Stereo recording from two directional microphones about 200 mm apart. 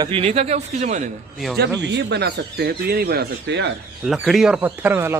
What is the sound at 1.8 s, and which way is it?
Speech, 60° right (ahead or behind).